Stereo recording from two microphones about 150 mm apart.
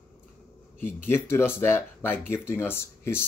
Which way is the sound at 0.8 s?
15° left (ahead or behind).